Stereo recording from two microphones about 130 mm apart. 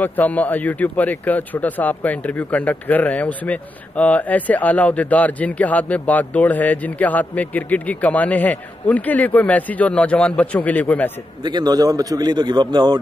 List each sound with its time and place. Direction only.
0.0 s speech: 15° left (ahead or behind)
11.4 s a man's voice: 30° right (ahead or behind)